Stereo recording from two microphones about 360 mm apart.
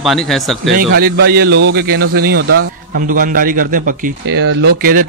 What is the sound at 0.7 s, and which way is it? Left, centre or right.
A man's voice, right.